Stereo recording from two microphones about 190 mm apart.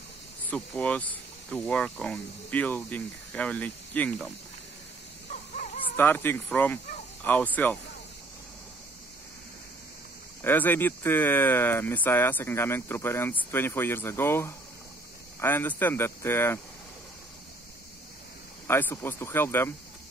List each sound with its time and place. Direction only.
0.5 s speech: 5° left (ahead or behind)
5.3 s a sound: 45° left (ahead or behind)
5.9 s speech: 10° left (ahead or behind)
10.4 s speech: 10° left (ahead or behind)
18.7 s speech: 10° left (ahead or behind)